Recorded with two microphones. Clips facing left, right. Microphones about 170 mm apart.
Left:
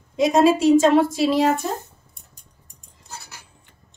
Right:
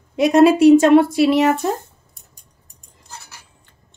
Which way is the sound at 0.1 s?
65° right (ahead or behind).